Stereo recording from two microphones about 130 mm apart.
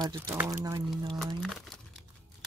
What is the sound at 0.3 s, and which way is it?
Speech, 15° right (ahead or behind).